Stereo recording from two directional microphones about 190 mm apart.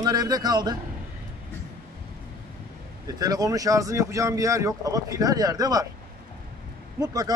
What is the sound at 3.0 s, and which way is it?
Speech, 20° right (ahead or behind).